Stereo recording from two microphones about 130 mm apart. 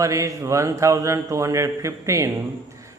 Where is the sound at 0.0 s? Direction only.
25° right (ahead or behind).